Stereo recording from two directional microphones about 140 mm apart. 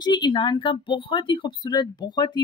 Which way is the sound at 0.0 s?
35° left (ahead or behind).